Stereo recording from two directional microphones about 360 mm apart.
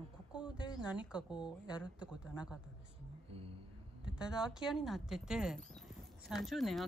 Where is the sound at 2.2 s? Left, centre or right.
Centre.